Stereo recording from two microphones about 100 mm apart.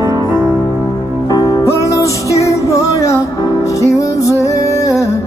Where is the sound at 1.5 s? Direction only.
30° left (ahead or behind).